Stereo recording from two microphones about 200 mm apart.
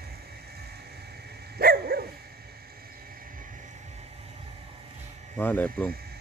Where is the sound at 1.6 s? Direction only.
50° right (ahead or behind).